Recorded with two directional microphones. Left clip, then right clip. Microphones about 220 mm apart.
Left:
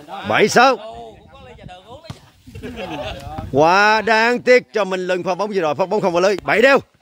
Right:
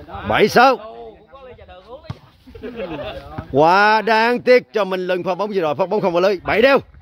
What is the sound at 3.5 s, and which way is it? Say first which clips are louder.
Speech: even; 5° left (ahead or behind).